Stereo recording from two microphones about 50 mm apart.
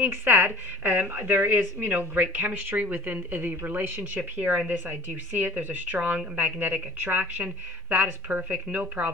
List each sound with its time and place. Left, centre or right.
0.0 s speech: right
7.4 s speech: right
8.3 s speech: right